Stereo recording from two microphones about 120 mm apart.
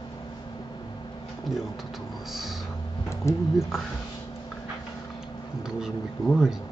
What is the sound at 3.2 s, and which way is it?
Speech, 25° left (ahead or behind).